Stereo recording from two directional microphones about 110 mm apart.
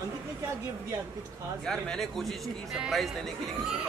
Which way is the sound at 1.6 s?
5° left (ahead or behind).